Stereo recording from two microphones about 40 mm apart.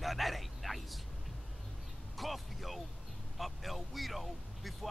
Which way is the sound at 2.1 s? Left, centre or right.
Centre.